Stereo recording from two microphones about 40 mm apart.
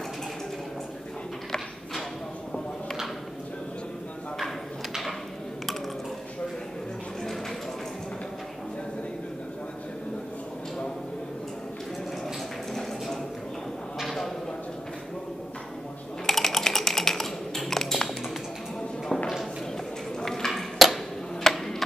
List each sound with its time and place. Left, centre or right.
12.7 s a sound: centre
16.3 s typing: centre
20.2 s ping: centre
21.4 s tick-tock: centre